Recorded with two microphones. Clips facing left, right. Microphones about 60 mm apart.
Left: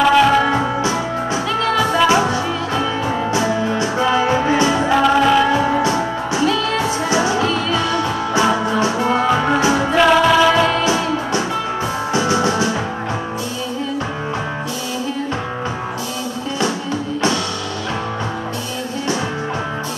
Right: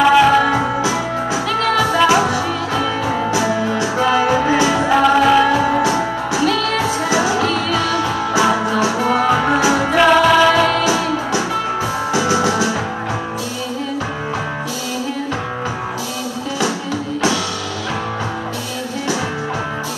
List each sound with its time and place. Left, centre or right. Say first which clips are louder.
0.0 s music: right 1 dB; centre
1.5 s music: right 1 dB; right
2.0 s music: right 1 dB; centre
3.4 s music: right 1 dB; centre
6.5 s music: right 1 dB; right
8.4 s music: right 1 dB; centre
9.9 s music: right 1 dB; centre
10.5 s music: right 1 dB; left